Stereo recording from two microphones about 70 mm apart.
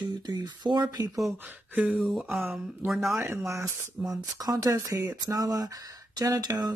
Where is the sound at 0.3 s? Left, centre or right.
Right.